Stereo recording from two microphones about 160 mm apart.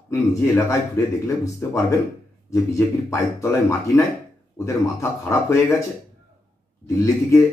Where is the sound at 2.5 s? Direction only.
20° left (ahead or behind).